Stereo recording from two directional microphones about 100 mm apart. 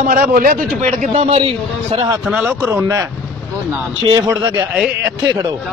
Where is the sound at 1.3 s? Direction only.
85° right.